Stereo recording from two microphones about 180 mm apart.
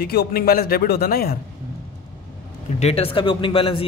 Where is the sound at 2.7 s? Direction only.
35° left (ahead or behind).